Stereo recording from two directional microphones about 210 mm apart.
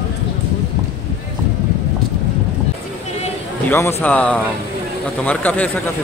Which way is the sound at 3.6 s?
10° left (ahead or behind).